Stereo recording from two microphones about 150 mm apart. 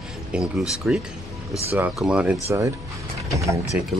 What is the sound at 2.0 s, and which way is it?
Speech, 5° right (ahead or behind).